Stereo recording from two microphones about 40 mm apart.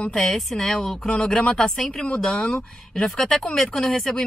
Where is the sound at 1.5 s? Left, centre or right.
Centre.